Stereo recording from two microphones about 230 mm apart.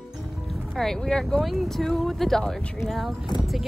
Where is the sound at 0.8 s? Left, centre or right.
Centre.